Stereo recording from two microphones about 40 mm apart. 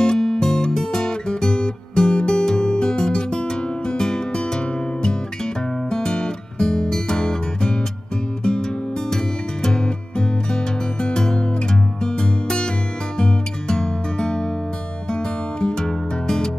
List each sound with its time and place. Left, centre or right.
0.0 s music: centre
5.9 s music: centre
9.1 s music: centre
15.6 s music: centre